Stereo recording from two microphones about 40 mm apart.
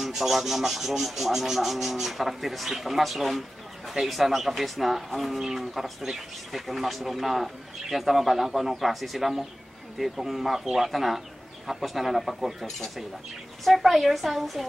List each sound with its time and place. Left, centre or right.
0.0 s speech: centre